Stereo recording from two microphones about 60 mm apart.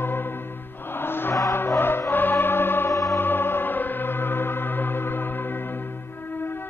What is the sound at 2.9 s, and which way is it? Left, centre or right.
Music, left.